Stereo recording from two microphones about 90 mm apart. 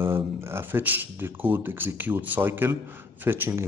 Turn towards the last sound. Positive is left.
turn(degrees=-30)  # may be behind; listen again after turning